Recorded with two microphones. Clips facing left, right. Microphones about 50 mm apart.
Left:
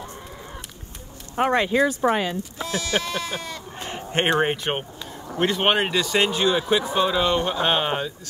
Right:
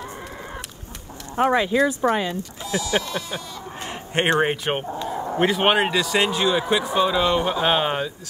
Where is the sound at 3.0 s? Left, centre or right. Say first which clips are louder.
Left 1 dB; left.